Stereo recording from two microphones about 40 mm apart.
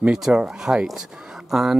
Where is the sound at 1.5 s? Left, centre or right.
Centre.